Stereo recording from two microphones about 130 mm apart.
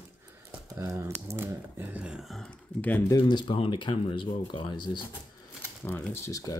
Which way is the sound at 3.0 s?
35° left (ahead or behind).